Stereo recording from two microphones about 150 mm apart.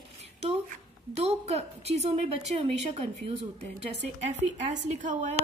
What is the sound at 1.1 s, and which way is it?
A woman's voice, 45° right (ahead or behind).